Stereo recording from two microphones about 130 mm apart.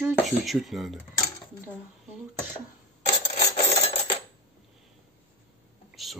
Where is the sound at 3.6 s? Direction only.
45° left (ahead or behind).